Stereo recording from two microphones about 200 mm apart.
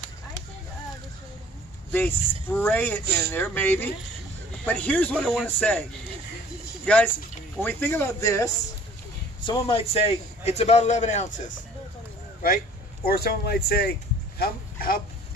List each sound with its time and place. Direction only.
1.9 s a man's voice: 10° left (ahead or behind)
3.1 s speech: 55° right (ahead or behind)
3.3 s a man's voice: 10° left (ahead or behind)
6.9 s a man's voice: 5° left (ahead or behind)
9.4 s a man's voice: 25° left (ahead or behind)
13.0 s speech: 50° left (ahead or behind)
14.4 s a sound: 45° left (ahead or behind)